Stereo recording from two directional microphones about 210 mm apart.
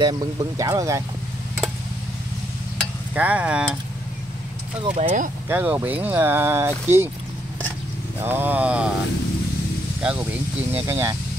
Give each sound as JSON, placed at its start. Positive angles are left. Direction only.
{"t": 0.0, "sound": "speech", "side_deg": -20}
{"t": 3.2, "sound": "speech", "side_deg": -5}
{"t": 4.9, "sound": "speech", "side_deg": -35}
{"t": 5.5, "sound": "speech", "side_deg": -10}
{"t": 8.2, "sound": "speech", "side_deg": -10}
{"t": 10.0, "sound": "speech", "side_deg": -5}